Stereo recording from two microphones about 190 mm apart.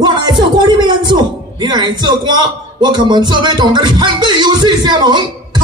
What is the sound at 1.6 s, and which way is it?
Speech, 25° right (ahead or behind).